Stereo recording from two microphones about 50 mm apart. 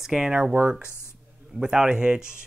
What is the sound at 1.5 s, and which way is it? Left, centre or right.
Speech, centre.